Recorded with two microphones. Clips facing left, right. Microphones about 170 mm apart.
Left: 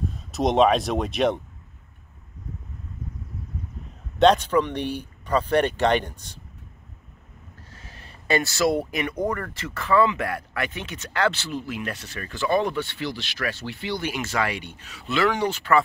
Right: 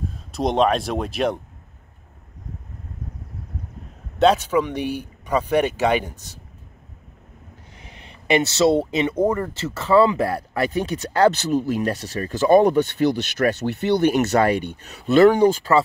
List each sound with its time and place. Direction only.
0.3 s speech: centre (ahead or behind)
4.2 s speech: 5° right (ahead or behind)
7.7 s a sound: 20° right (ahead or behind)
9.2 s speech: 25° right (ahead or behind); by 15.7 s 40° right (ahead or behind)